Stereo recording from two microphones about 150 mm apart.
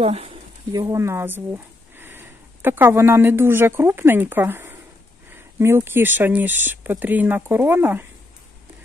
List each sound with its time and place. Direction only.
0.0 s speech: 40° right (ahead or behind)
0.7 s speech: 20° right (ahead or behind)